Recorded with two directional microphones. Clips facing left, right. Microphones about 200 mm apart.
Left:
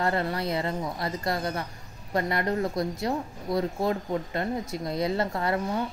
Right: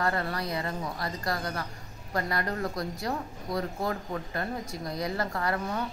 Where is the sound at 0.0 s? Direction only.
25° left (ahead or behind).